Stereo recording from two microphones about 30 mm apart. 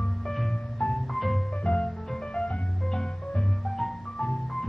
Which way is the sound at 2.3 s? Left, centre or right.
Left.